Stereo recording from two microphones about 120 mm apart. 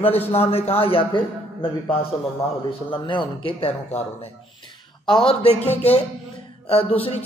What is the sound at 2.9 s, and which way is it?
A man's voice, 45° left (ahead or behind).